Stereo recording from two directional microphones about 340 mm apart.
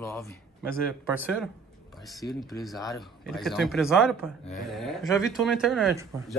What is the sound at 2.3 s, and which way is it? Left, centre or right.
A man's voice, centre.